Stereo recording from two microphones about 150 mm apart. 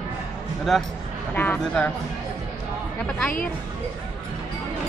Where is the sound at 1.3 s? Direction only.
10° left (ahead or behind).